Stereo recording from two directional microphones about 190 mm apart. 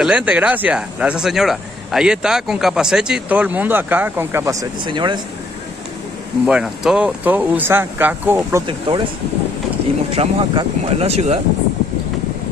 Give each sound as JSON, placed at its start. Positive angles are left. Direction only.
{"t": 0.0, "sound": "speech", "side_deg": -5}
{"t": 6.4, "sound": "speech", "side_deg": -5}
{"t": 8.6, "sound": "speech", "side_deg": -25}
{"t": 10.1, "sound": "speech", "side_deg": -30}